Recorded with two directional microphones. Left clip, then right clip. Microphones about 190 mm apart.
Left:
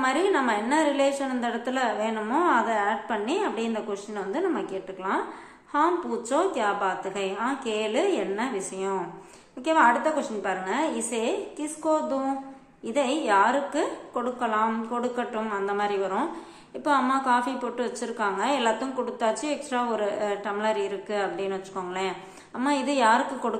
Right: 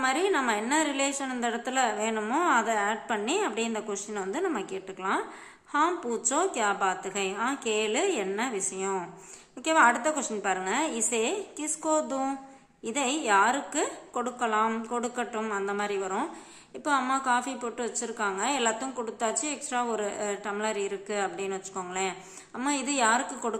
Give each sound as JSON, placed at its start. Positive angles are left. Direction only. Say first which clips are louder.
{"t": 0.0, "sound": "a woman's voice", "louder": "left 3 dB", "side_deg": -25}